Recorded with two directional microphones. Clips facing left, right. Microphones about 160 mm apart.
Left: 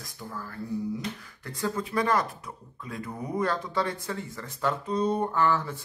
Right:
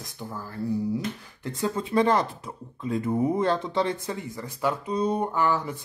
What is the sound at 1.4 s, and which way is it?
Speech, 20° right (ahead or behind).